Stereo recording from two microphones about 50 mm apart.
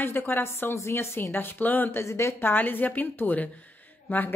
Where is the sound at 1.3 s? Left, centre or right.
Left.